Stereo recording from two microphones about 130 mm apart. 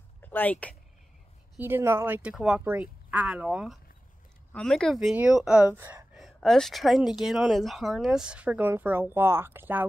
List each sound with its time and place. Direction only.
0.2 s speech: 15° left (ahead or behind)
1.6 s speech: 15° right (ahead or behind)
4.6 s speech: 5° left (ahead or behind); by 5.9 s 15° right (ahead or behind)
6.1 s speech: centre (ahead or behind); by 9.8 s 15° right (ahead or behind)